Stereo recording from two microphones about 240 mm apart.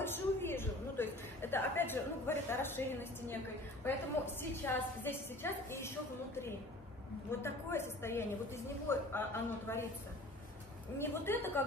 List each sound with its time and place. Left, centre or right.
0.0 s a sound: centre
4.4 s a woman's voice: centre
11.0 s a woman's voice: centre